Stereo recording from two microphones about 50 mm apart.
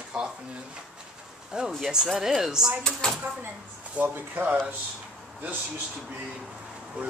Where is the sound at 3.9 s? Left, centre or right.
Right.